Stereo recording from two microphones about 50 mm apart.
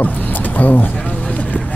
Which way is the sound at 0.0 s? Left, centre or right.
Left.